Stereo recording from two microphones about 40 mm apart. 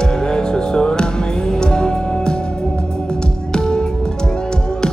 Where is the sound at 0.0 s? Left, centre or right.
Centre.